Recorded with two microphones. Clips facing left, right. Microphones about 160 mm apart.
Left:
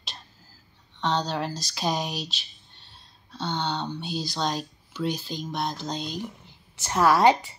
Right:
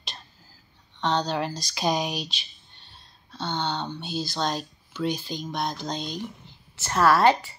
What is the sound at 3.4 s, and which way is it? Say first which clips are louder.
A woman's voice: even; 10° left (ahead or behind).